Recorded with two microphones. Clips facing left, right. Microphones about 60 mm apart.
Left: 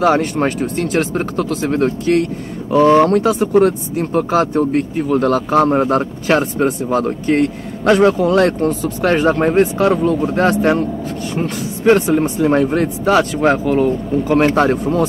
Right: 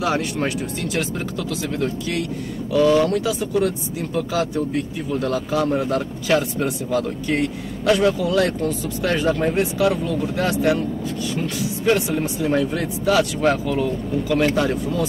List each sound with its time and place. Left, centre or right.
0.0 s speech: left